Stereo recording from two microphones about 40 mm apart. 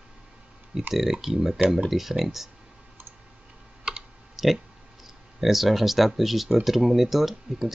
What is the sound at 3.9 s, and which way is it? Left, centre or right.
Computer keyboard, right.